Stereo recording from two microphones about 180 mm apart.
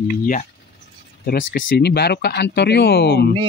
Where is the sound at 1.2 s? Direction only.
60° left (ahead or behind).